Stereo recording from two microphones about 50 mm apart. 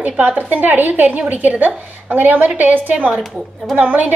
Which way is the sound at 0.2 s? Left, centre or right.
Right.